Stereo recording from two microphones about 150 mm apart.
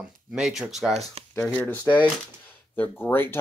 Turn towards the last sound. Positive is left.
turn(degrees=15)  # may be behind; listen again after turning